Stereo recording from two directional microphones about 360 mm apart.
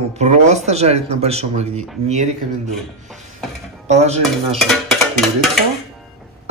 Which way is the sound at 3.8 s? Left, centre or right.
Centre.